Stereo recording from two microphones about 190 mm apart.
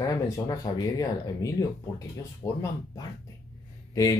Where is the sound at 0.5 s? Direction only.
20° left (ahead or behind).